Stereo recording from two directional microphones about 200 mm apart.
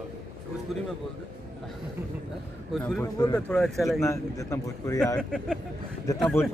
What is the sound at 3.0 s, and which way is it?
Speech, 15° left (ahead or behind).